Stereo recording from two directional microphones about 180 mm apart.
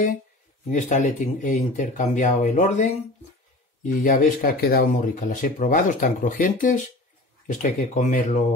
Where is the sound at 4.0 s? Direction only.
50° left (ahead or behind).